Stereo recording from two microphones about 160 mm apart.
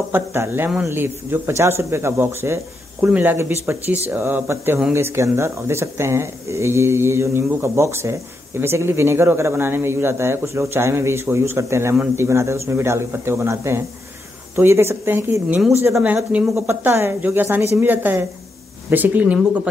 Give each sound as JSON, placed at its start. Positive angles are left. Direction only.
{"t": 0.1, "sound": "speech", "side_deg": -15}